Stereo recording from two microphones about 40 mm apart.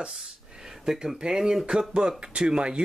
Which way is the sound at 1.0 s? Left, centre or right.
Centre.